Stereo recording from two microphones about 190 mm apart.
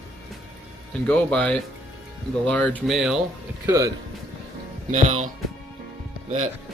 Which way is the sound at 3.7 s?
15° right (ahead or behind).